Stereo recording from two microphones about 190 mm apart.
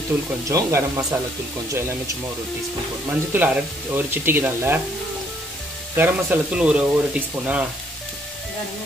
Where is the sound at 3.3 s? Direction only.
10° right (ahead or behind).